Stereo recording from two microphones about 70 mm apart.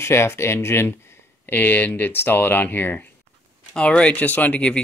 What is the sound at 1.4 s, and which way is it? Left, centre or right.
Speech, left.